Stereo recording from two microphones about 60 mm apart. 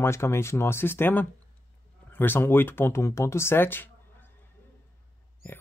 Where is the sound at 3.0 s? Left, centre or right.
Left.